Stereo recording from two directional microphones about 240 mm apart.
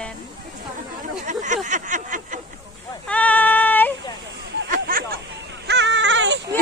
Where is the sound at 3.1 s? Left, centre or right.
Centre.